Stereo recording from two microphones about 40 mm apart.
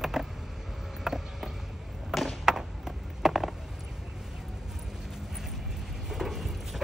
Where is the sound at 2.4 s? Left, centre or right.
Centre.